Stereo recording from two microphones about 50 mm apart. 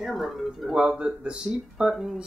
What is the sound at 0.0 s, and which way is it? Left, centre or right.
Speech, centre.